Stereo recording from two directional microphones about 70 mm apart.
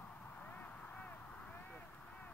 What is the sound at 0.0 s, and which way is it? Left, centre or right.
Vehicle, left.